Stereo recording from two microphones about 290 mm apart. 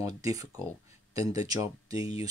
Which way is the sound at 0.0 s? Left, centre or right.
Centre.